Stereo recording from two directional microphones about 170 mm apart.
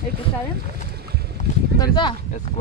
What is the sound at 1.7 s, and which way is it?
Speech, 25° left (ahead or behind).